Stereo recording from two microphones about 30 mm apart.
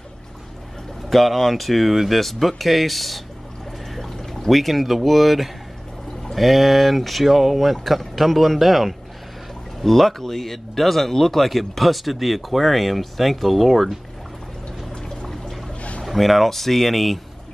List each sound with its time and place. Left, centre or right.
1.1 s speech: centre
3.9 s pour: centre
4.5 s speech: centre
15.0 s music: centre
16.1 s speech: centre